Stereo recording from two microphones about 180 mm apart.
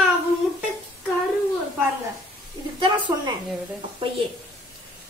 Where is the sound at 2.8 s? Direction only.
25° right (ahead or behind).